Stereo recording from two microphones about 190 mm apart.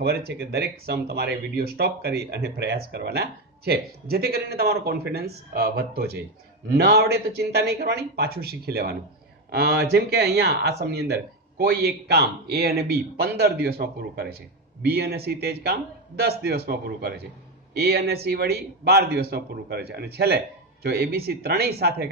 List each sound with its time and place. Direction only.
0.0 s speech: 60° right (ahead or behind)